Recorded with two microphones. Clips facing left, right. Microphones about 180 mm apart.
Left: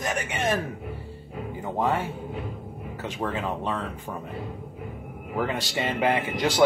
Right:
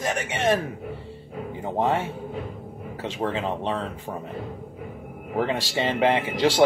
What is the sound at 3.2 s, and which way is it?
Speech, 25° right (ahead or behind).